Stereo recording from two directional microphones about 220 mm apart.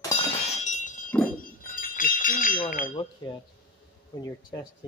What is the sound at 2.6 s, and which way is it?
Speech, 40° left (ahead or behind).